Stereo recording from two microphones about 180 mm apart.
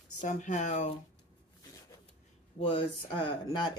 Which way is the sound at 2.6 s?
30° left (ahead or behind).